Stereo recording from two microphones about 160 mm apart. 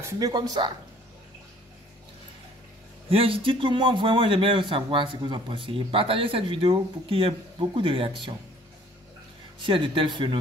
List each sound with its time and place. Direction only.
0.0 s speech: 25° right (ahead or behind)
3.1 s speech: 35° right (ahead or behind)
9.6 s speech: 35° right (ahead or behind)